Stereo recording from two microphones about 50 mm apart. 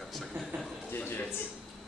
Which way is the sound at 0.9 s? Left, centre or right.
Left.